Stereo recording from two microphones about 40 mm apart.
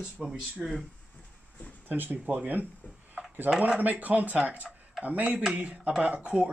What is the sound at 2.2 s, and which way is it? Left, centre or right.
Speech, right.